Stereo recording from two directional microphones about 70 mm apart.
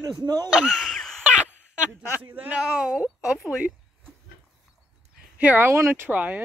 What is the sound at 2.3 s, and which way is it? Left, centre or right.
Speech, right.